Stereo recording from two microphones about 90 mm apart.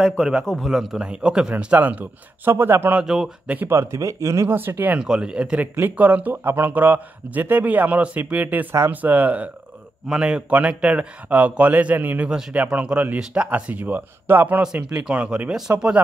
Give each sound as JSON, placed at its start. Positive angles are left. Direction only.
{"t": 0.2, "sound": "a man's voice", "side_deg": 0}
{"t": 3.0, "sound": "a man's voice", "side_deg": -5}
{"t": 3.4, "sound": "a man's voice", "side_deg": -20}
{"t": 5.0, "sound": "a man's voice", "side_deg": -10}